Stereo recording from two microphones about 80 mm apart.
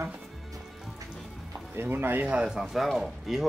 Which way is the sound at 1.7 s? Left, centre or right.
Right.